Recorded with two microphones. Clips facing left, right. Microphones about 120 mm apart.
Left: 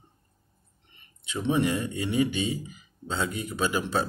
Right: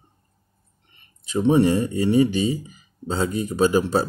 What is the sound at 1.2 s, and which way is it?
Speech, 35° right (ahead or behind).